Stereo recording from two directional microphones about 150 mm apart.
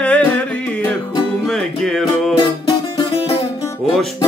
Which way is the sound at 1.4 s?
5° left (ahead or behind).